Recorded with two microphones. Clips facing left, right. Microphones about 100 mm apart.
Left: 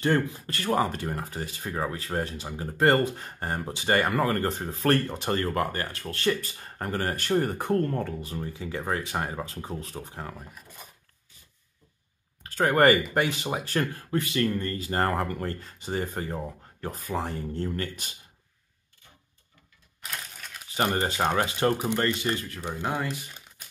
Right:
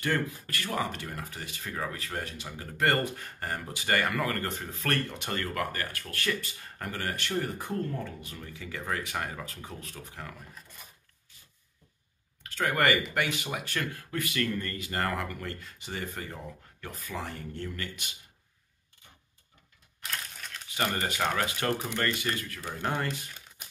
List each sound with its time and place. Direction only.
0.0 s speech: 25° left (ahead or behind)
0.7 s speech: 40° left (ahead or behind); by 8.1 s 55° left (ahead or behind)
8.2 s speech: 35° left (ahead or behind)
12.4 s speech: 40° left (ahead or behind)
20.0 s a sound: centre (ahead or behind)
20.7 s speech: 30° left (ahead or behind)
22.8 s speech: 10° left (ahead or behind)